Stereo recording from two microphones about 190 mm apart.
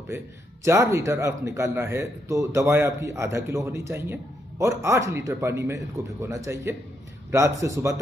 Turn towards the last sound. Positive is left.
turn(degrees=-15)  # may be behind; listen again after turning